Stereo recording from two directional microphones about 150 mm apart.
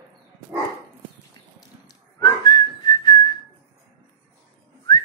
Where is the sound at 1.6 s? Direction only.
25° left (ahead or behind).